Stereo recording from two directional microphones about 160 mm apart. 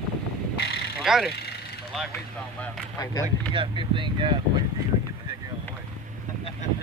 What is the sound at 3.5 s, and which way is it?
Speech, 30° right (ahead or behind).